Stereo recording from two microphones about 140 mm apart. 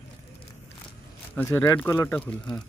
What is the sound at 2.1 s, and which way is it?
Speech, 10° left (ahead or behind).